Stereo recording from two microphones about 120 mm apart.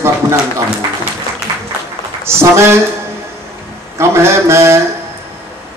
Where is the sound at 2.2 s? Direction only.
20° right (ahead or behind).